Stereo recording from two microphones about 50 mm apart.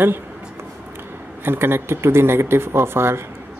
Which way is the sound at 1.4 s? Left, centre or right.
Right.